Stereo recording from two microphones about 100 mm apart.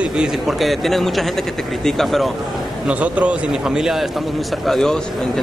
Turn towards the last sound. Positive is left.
turn(degrees=5)  # may be behind; listen again after turning